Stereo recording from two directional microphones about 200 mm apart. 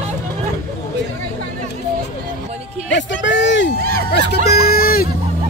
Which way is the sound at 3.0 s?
65° left (ahead or behind).